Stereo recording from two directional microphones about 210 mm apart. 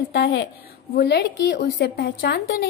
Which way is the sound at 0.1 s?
55° left (ahead or behind).